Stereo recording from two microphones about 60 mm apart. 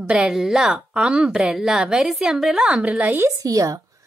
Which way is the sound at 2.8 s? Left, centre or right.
Right.